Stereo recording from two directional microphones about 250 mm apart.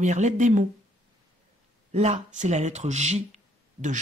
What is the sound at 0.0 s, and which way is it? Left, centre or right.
Speech, right.